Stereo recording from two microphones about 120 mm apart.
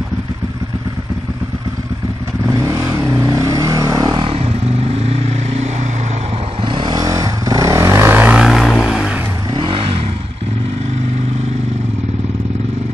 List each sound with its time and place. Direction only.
2.5 s vehicle: 25° right (ahead or behind)
4.2 s vehicle: 55° right (ahead or behind)
6.7 s vehicle: 40° right (ahead or behind); by 8.5 s 15° right (ahead or behind)
8.5 s vehicle: centre (ahead or behind)
9.5 s vehicle: 45° right (ahead or behind)